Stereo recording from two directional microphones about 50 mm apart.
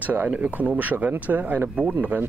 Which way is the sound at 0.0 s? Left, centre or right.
Right.